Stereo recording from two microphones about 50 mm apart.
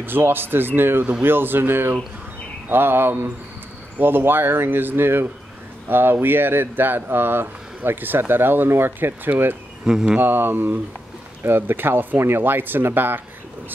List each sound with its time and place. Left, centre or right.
0.0 s speech: right
9.8 s speech: centre
10.1 s mantra: right
11.4 s speech: right